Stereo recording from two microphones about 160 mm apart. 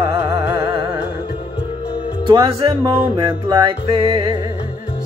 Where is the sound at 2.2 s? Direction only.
25° right (ahead or behind).